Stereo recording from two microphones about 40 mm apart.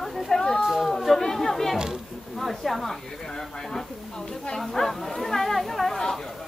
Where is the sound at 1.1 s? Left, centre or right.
Centre.